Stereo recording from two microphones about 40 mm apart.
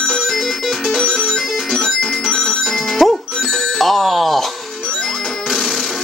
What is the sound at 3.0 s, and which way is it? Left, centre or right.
Music, centre.